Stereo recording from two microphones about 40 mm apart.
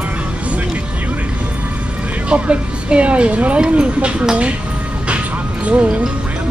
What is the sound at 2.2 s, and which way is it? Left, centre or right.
Speech, right.